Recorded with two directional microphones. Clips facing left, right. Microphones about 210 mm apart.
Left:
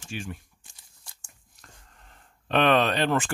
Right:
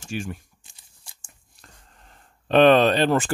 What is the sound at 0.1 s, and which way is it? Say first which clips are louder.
Speech: right 5 dB; 45° right (ahead or behind).